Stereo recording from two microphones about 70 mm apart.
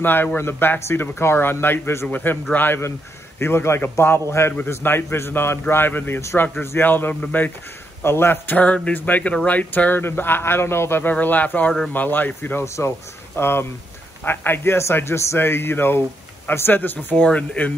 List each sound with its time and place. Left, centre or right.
0.0 s speech: left
2.0 s a man's voice: left
8.0 s a man's voice: left
12.6 s a man's voice: left; by 17.7 s centre